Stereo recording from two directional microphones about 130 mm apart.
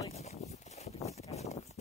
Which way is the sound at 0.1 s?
55° left (ahead or behind).